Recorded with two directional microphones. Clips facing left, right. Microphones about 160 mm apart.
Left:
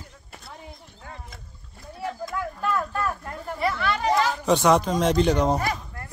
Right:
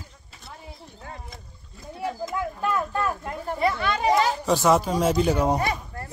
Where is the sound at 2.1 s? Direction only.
20° right (ahead or behind).